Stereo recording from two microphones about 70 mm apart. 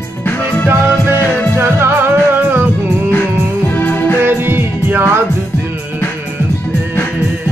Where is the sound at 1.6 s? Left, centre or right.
Right.